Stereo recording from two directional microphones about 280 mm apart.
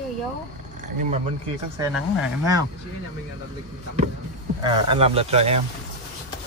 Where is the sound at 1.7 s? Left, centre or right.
Centre.